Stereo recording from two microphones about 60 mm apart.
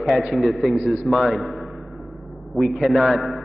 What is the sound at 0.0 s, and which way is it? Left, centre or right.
A man's voice, centre.